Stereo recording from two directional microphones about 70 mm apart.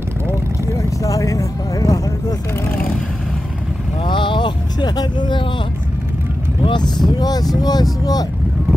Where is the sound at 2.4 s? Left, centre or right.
Left.